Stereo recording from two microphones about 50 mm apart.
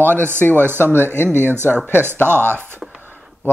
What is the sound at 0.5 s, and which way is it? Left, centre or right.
Speech, right.